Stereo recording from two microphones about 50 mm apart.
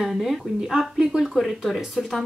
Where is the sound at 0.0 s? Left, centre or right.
Centre.